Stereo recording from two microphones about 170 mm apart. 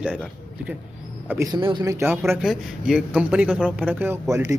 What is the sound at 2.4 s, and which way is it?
Speech, centre (ahead or behind).